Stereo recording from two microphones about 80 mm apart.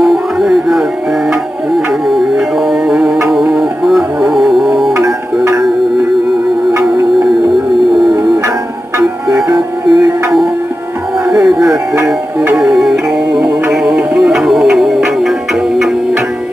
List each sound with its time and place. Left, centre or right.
0.0 s music: centre
2.0 s music: centre
9.8 s music: centre
11.7 s music: right
12.5 s music: centre